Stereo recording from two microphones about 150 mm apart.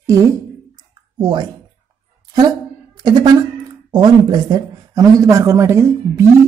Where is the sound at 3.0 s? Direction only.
25° right (ahead or behind).